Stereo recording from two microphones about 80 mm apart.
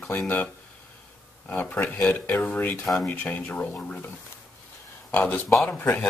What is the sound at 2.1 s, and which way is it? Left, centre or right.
Speech, left.